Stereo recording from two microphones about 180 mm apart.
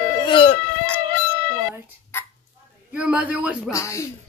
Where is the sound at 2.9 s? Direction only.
5° right (ahead or behind).